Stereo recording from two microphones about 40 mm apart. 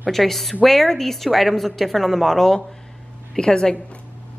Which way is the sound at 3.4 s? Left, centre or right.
Centre.